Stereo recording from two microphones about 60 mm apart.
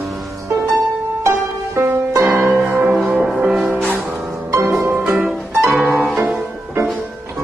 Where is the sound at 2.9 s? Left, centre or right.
Centre.